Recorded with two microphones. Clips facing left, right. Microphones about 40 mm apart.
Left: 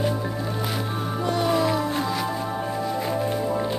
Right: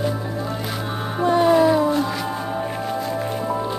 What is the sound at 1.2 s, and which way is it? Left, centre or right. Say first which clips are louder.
Music: right 7 dB; right.